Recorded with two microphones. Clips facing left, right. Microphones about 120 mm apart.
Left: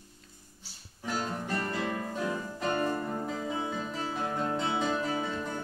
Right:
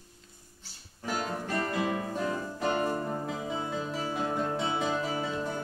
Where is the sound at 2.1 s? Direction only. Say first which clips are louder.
Right 1 dB; 5° right (ahead or behind).